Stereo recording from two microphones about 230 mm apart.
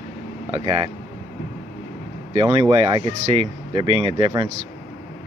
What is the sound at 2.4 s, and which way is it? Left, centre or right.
Speech, right.